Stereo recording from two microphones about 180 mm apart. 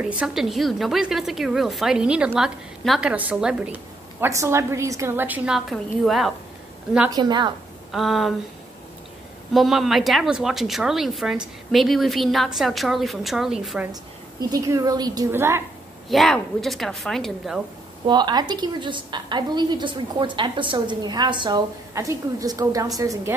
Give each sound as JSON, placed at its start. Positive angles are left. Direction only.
{"t": 0.0, "sound": "a woman's voice", "side_deg": -5}
{"t": 7.1, "sound": "a woman's voice", "side_deg": -25}
{"t": 7.9, "sound": "a woman's voice", "side_deg": 0}
{"t": 9.5, "sound": "a woman's voice", "side_deg": 0}
{"t": 14.5, "sound": "a woman's voice", "side_deg": -20}
{"t": 16.1, "sound": "a woman's voice", "side_deg": 0}
{"t": 18.0, "sound": "a woman's voice", "side_deg": -25}